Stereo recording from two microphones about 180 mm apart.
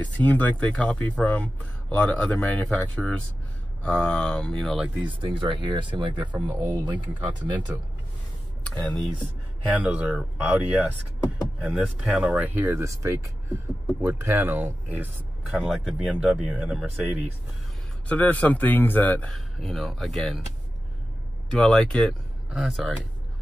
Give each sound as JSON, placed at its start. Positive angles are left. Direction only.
{"t": 0.0, "sound": "speech", "side_deg": 10}
{"t": 5.2, "sound": "speech", "side_deg": -30}
{"t": 8.6, "sound": "speech", "side_deg": 5}
{"t": 18.0, "sound": "speech", "side_deg": 10}
{"t": 21.5, "sound": "speech", "side_deg": 5}